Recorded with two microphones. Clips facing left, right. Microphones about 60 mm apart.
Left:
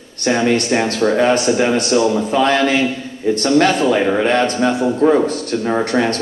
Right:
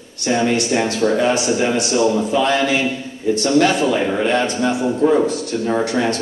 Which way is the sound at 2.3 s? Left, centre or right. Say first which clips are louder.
Left 2 dB; left.